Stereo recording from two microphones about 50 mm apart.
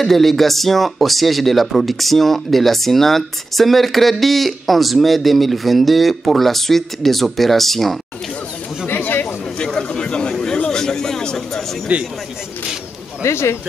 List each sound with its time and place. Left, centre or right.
0.0 s speech: centre
8.8 s chatter: left
9.7 s a sound: centre
11.9 s speech: right
13.2 s speech: left